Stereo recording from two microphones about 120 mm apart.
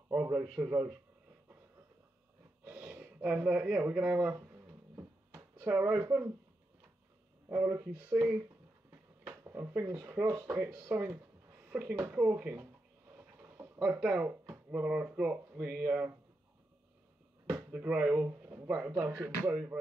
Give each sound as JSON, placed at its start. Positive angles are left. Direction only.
{"t": 0.2, "sound": "a sound", "side_deg": -25}
{"t": 0.7, "sound": "speech", "side_deg": -35}
{"t": 2.6, "sound": "a sound", "side_deg": -15}
{"t": 5.9, "sound": "speech", "side_deg": -30}
{"t": 7.4, "sound": "speech", "side_deg": -20}
{"t": 9.5, "sound": "speech", "side_deg": -20}
{"t": 10.9, "sound": "speech", "side_deg": -15}
{"t": 13.7, "sound": "speech", "side_deg": -10}
{"t": 17.7, "sound": "speech", "side_deg": -10}
{"t": 18.6, "sound": "a sound", "side_deg": -15}
{"t": 18.9, "sound": "speech", "side_deg": -20}